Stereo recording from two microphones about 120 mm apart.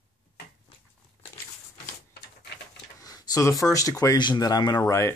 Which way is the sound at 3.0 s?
30° left (ahead or behind).